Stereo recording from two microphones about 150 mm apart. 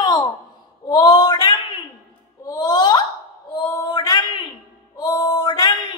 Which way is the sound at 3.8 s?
25° left (ahead or behind).